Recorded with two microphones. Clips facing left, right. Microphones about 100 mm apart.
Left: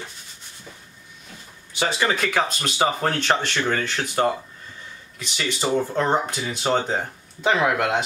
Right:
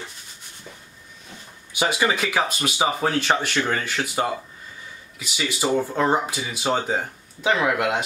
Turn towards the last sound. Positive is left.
turn(degrees=-5)  # may be behind; listen again after turning